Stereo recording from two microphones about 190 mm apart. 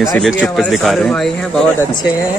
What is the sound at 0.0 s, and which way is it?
Speech, centre (ahead or behind).